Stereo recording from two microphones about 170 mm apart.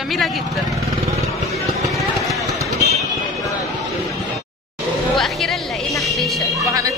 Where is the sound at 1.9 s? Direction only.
Centre (ahead or behind).